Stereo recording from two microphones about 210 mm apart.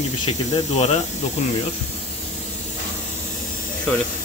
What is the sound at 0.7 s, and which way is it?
Speech, 30° left (ahead or behind).